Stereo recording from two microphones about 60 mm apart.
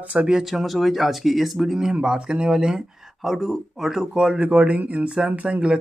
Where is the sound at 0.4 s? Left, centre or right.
Centre.